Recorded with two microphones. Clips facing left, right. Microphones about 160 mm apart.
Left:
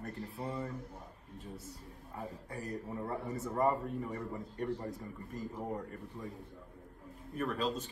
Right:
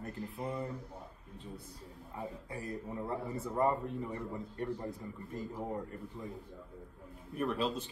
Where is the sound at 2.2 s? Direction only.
Centre (ahead or behind).